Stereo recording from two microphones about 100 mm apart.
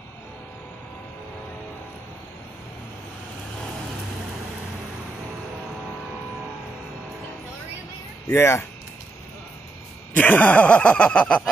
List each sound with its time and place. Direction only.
8.3 s speech: 25° left (ahead or behind)
10.1 s speech: 15° left (ahead or behind)